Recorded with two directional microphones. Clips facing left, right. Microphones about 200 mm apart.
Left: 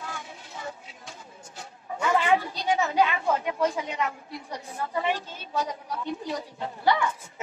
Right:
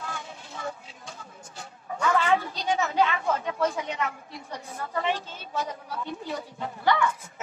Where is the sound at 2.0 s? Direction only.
15° left (ahead or behind).